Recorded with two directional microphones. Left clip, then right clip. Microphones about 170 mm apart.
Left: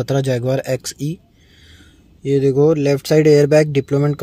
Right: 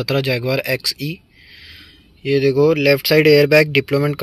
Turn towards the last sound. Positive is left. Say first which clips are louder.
# right 1 dB
turn(degrees=15)  # may be behind; listen again after turning